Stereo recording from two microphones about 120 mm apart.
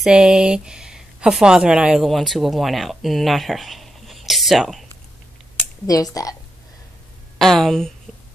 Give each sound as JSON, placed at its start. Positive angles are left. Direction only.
{"t": 0.0, "sound": "speech", "side_deg": -5}
{"t": 5.9, "sound": "speech", "side_deg": 30}
{"t": 7.3, "sound": "speech", "side_deg": 0}